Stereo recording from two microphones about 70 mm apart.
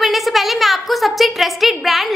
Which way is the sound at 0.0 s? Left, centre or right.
Centre.